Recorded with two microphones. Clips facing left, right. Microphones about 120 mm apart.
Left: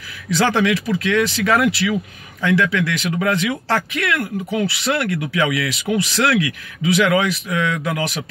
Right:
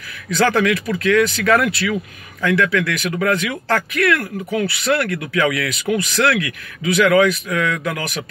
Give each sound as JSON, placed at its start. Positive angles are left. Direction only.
{"t": 0.5, "sound": "speech", "side_deg": 20}